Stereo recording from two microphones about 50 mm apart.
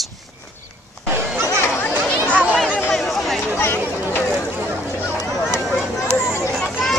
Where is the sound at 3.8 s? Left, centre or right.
Right.